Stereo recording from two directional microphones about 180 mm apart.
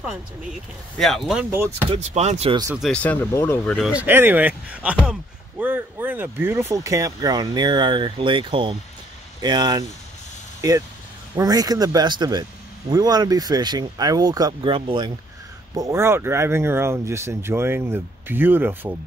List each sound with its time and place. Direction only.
0.9 s speech: centre (ahead or behind)
1.9 s speech: 40° right (ahead or behind)
2.7 s speech: centre (ahead or behind)
3.9 s speech: 10° right (ahead or behind)